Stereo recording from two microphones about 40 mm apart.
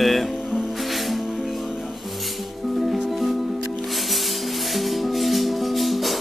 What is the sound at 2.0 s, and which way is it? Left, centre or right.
Music, centre.